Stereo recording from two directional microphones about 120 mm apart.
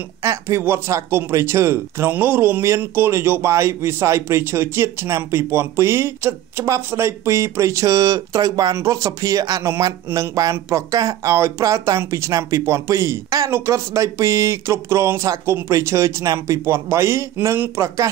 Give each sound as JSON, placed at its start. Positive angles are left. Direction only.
{"t": 0.2, "sound": "speech", "side_deg": -25}